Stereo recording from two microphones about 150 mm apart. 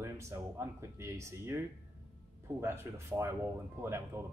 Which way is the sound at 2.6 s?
15° right (ahead or behind).